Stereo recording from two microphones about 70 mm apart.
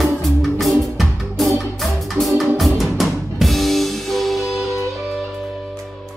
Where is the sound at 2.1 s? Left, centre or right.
Centre.